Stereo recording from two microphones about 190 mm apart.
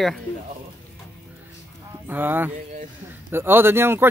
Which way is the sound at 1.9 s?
10° right (ahead or behind).